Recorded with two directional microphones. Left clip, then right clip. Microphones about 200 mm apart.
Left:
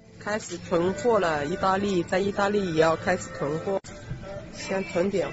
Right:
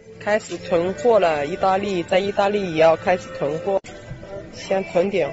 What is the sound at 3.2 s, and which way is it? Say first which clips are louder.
Speech: right 5 dB; 20° left (ahead or behind).